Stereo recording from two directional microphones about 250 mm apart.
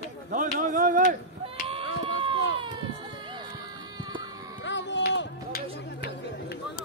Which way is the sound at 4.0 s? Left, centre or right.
Centre.